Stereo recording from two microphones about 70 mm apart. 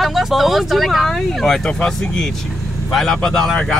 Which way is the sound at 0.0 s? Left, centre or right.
Centre.